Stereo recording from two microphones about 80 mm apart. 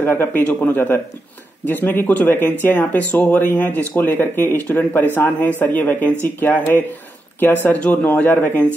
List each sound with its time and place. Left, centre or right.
0.0 s speech: left